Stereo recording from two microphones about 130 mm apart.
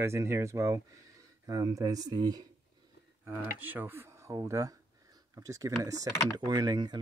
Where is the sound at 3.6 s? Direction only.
15° right (ahead or behind); by 7.0 s 30° right (ahead or behind).